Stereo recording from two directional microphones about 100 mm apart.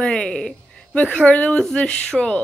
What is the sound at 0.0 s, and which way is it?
Speech, 10° left (ahead or behind).